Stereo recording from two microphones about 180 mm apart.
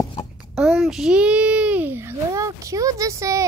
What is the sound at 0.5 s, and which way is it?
A child's voice, 5° right (ahead or behind).